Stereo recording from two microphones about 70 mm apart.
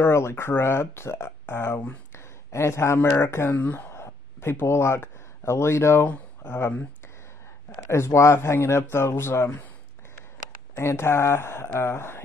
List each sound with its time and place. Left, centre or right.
0.1 s speech: left
3.3 s speech: left
3.5 s speech: left
3.9 s a sound: left
5.0 s speech: left
6.0 s speech: left
7.9 s speech: left
10.8 s speech: left